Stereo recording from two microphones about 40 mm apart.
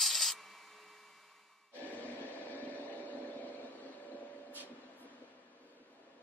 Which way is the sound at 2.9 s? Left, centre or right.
Left.